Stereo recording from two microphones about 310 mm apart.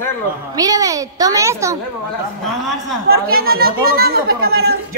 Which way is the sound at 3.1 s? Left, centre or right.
Right.